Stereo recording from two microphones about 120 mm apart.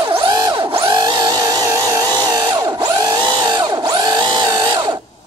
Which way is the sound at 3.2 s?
35° right (ahead or behind).